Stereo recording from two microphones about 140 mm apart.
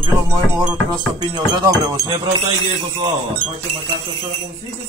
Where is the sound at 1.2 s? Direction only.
30° right (ahead or behind).